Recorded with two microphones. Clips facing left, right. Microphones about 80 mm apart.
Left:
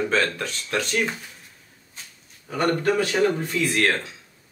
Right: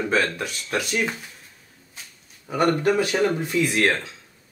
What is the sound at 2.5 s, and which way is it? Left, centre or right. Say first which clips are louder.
Speech: right 2 dB; centre.